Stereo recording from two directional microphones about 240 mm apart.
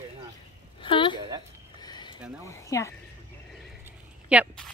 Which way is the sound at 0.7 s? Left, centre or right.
Centre.